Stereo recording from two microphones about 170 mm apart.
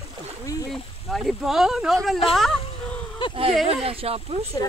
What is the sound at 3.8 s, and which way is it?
Speech, 35° right (ahead or behind).